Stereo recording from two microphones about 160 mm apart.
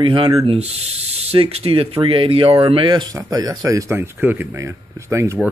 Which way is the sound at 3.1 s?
20° right (ahead or behind).